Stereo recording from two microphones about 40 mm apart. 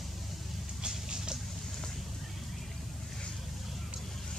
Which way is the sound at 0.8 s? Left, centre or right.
Centre.